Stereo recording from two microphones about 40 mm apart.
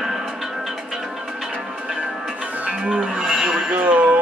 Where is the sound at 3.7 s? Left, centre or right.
Right.